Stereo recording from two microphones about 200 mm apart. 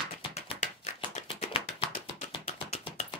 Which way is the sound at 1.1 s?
30° left (ahead or behind).